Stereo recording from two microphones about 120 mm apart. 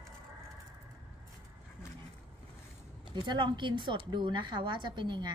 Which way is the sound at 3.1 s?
40° right (ahead or behind).